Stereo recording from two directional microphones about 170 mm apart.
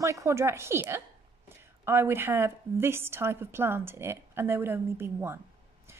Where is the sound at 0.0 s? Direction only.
20° right (ahead or behind).